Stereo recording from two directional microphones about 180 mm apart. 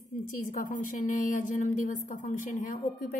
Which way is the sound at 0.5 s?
45° left (ahead or behind).